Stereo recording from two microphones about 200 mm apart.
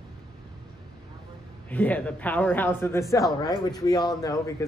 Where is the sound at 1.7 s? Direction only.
5° left (ahead or behind).